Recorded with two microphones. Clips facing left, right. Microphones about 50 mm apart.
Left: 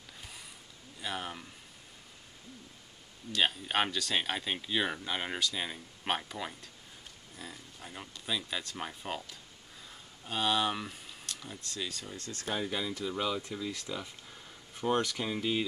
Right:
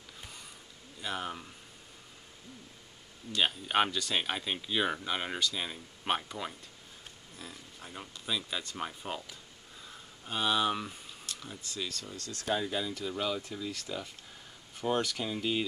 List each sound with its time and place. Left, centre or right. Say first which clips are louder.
1.0 s speech: right 1 dB; centre
3.3 s speech: right 1 dB; centre
10.2 s speech: right 1 dB; centre
11.9 s speech: even; centre
12.2 s speech: right 3 dB; left
13.1 s speech: even; centre
13.4 s speech: left 1 dB; left
13.8 s speech: even; centre
15.0 s speech: left 1 dB; centre